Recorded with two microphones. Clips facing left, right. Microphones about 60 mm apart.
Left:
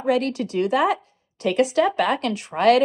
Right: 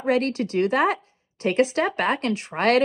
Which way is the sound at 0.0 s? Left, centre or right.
Right.